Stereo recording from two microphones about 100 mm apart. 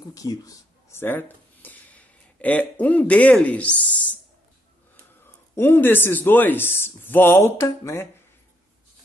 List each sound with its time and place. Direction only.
0.1 s speech: 35° left (ahead or behind); by 4.2 s 15° left (ahead or behind)
5.6 s speech: 20° left (ahead or behind)